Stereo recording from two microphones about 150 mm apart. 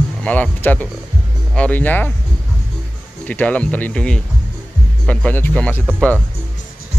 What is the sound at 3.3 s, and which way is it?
Speech, 10° left (ahead or behind).